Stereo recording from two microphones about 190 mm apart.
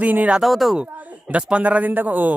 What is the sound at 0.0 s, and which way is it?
Speech, 10° right (ahead or behind).